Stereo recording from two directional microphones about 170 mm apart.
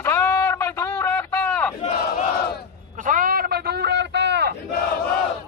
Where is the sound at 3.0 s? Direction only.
50° right (ahead or behind); by 4.6 s 85° right.